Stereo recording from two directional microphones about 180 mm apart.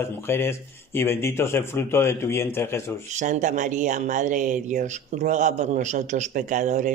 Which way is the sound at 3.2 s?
45° right (ahead or behind).